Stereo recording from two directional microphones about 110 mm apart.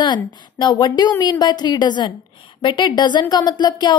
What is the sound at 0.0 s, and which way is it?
Speech, 40° left (ahead or behind).